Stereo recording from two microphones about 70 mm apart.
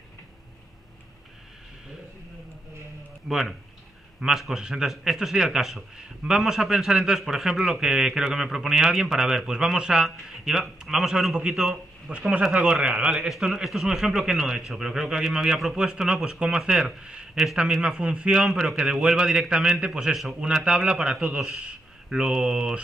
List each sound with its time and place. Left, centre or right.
3.3 s a man's voice: centre
12.1 s speech: centre
12.4 s a man's voice: centre
12.8 s speech: centre
13.3 s a man's voice: centre